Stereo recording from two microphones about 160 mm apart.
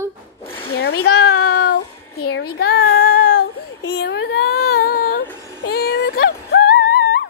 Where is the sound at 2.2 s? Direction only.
75° left (ahead or behind).